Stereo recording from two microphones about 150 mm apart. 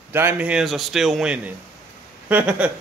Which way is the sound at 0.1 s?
15° right (ahead or behind).